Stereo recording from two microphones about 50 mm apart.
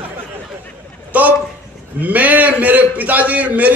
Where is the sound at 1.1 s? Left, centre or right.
Right.